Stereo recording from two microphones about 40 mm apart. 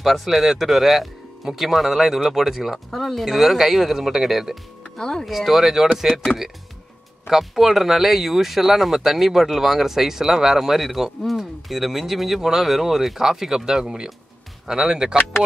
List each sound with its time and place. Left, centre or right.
0.0 s speech: centre
2.9 s speech: centre
4.9 s speech: centre
5.2 s speech: centre
7.2 s speech: centre